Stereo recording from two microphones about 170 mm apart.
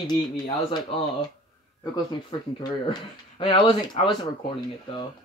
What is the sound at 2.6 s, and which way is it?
Speech, 25° left (ahead or behind).